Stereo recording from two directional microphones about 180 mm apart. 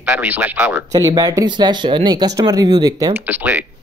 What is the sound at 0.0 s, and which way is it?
Speech, 10° right (ahead or behind).